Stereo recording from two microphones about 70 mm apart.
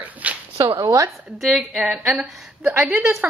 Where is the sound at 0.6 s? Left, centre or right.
Right.